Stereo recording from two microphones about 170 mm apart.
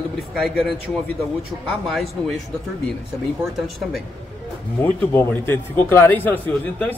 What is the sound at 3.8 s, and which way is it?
Speech, centre (ahead or behind).